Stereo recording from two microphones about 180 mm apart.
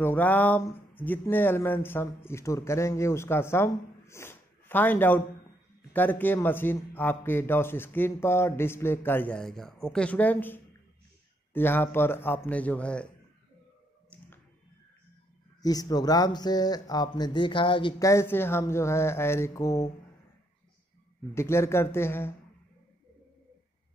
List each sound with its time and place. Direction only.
0.0 s speech: 10° left (ahead or behind)
14.1 s a sound: 10° left (ahead or behind)
15.6 s speech: 20° left (ahead or behind)
21.4 s speech: 15° left (ahead or behind)